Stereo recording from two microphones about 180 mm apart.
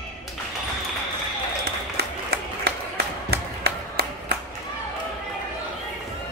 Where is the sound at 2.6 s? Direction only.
65° right (ahead or behind).